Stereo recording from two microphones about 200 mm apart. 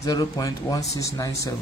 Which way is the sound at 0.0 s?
20° left (ahead or behind).